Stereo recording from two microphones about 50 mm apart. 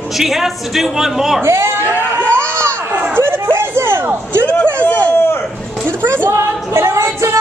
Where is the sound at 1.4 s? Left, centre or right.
Right.